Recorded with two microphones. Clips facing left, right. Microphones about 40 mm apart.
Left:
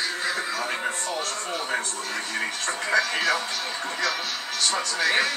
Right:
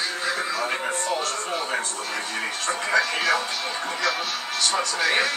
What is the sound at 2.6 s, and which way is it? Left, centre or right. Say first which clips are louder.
Television: right 2 dB; right.